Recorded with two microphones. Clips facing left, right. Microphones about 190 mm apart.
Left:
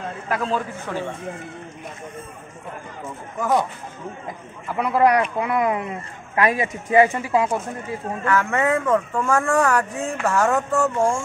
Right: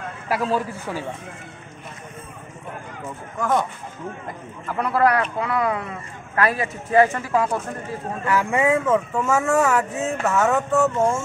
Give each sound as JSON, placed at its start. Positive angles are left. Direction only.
{"t": 0.3, "sound": "a man's voice", "side_deg": -10}
{"t": 4.6, "sound": "speech", "side_deg": 10}
{"t": 8.3, "sound": "speech", "side_deg": -10}